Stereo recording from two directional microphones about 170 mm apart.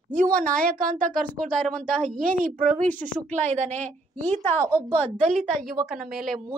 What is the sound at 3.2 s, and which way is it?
Speech, 45° right (ahead or behind).